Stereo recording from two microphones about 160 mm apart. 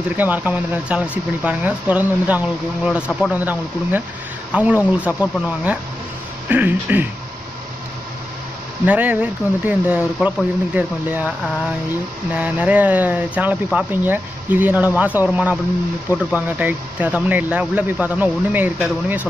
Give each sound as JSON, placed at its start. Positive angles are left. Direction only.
{"t": 0.1, "sound": "speech", "side_deg": -10}
{"t": 6.5, "sound": "speech", "side_deg": -10}
{"t": 8.8, "sound": "speech", "side_deg": -10}